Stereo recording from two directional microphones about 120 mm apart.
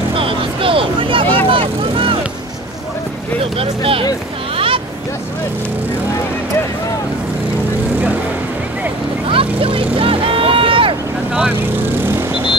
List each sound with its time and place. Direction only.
0.1 s vehicle: 50° right (ahead or behind)
3.5 s speech: 50° right (ahead or behind)
4.6 s a sound: 50° right (ahead or behind)
9.3 s vehicle: 50° right (ahead or behind)